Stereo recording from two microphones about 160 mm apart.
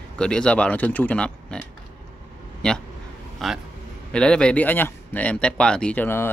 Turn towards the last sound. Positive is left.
turn(degrees=15)  # may be behind; listen again after turning